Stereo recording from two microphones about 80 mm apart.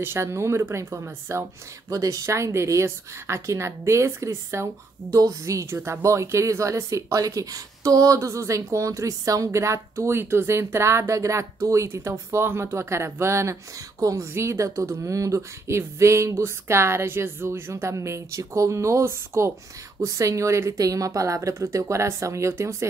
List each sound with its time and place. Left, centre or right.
0.0 s speech: right
1.9 s speech: right